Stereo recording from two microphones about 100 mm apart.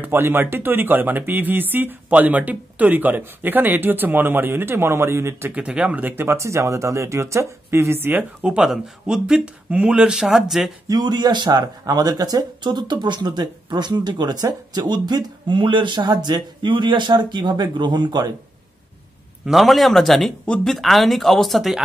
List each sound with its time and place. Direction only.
0.0 s speech: 20° right (ahead or behind)
5.5 s speech: 10° right (ahead or behind)
10.9 s speech: 45° right (ahead or behind)
19.4 s speech: centre (ahead or behind)